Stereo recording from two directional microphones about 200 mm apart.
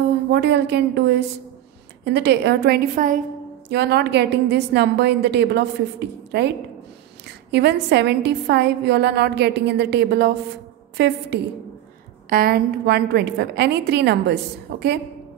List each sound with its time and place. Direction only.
0.3 s a woman's voice: 55° right (ahead or behind)
3.6 s a woman's voice: 55° right (ahead or behind)
12.3 s a woman's voice: 50° right (ahead or behind)